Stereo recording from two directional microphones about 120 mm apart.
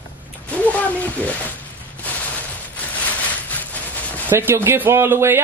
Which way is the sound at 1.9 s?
15° left (ahead or behind).